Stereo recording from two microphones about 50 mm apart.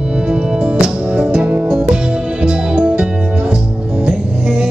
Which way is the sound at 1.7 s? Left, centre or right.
Right.